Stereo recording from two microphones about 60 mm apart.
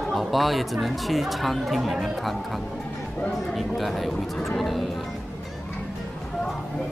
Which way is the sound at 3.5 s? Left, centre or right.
Centre.